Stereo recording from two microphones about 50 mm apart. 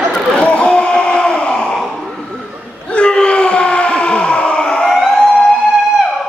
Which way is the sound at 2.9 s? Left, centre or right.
Centre.